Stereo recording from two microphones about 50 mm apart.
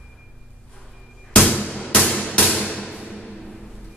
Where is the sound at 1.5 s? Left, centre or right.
Left.